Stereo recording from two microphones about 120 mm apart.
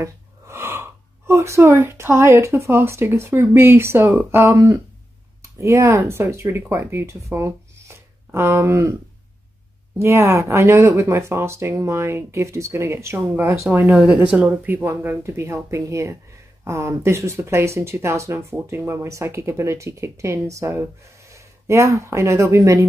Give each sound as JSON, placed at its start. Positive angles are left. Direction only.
{"t": 0.0, "sound": "speech", "side_deg": -25}
{"t": 9.9, "sound": "speech", "side_deg": -20}